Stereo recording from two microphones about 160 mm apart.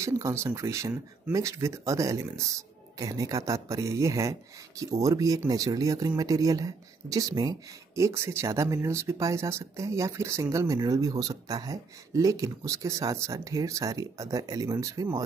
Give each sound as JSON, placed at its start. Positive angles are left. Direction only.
{"t": 0.0, "sound": "speech", "side_deg": -20}